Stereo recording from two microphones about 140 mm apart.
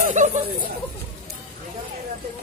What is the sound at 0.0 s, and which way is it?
Chatter, 60° right (ahead or behind).